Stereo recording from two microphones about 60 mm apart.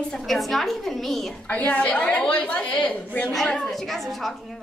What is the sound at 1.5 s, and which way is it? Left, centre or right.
A woman's voice, left.